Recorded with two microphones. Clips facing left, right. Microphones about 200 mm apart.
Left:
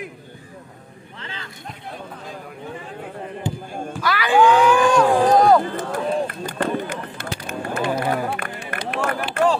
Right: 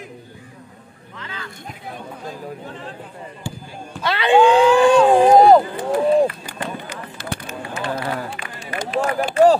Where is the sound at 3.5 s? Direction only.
20° left (ahead or behind).